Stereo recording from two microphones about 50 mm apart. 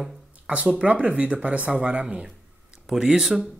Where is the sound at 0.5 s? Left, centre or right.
Right.